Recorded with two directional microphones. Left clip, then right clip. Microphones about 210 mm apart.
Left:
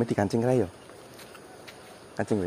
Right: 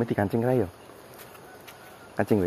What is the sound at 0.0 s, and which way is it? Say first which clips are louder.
Speech: even; 10° left (ahead or behind).